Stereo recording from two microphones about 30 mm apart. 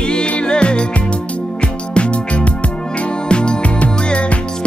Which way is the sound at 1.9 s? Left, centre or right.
Left.